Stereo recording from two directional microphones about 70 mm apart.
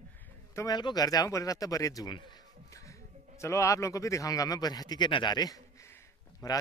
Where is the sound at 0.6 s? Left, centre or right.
Left.